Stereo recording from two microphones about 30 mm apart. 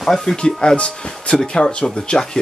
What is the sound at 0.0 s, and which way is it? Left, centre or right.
Speech, centre.